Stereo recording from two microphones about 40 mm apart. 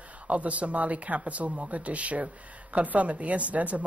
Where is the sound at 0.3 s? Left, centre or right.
Right.